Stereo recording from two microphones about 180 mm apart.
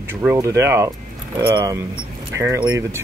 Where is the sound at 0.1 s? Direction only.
10° right (ahead or behind).